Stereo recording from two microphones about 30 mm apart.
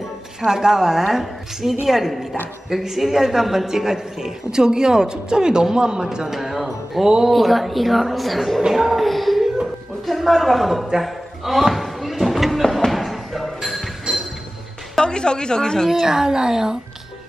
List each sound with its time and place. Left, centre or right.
0.4 s a woman's voice: centre
6.2 s a woman's voice: centre
11.0 s a sound: centre
14.1 s chink: right
15.0 s speech: left
16.1 s a woman's voice: centre